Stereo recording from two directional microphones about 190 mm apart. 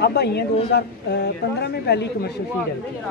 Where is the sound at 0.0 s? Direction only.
60° left (ahead or behind).